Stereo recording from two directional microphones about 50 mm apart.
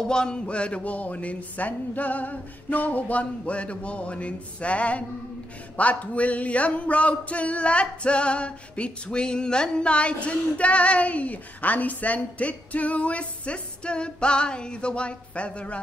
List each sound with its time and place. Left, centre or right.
0.1 s speech: centre